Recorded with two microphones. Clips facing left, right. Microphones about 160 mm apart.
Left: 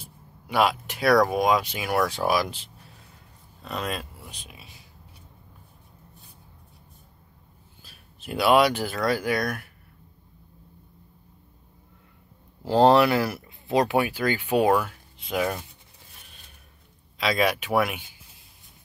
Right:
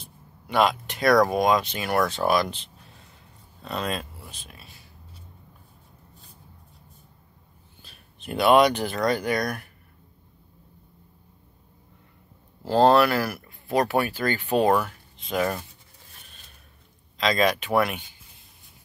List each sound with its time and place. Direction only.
0.0 s a sound: 5° left (ahead or behind)
1.2 s speech: 5° left (ahead or behind)
4.2 s speech: 15° left (ahead or behind)
7.8 s speech: 5° left (ahead or behind)
12.6 s speech: 15° left (ahead or behind)
17.2 s speech: 10° left (ahead or behind)